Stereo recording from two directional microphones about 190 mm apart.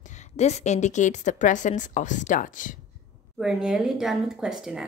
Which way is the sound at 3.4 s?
Centre (ahead or behind).